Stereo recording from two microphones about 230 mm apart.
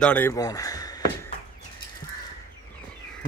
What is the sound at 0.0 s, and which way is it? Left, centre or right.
Speech, centre.